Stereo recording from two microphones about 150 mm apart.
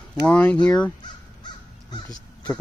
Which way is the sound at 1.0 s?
30° left (ahead or behind).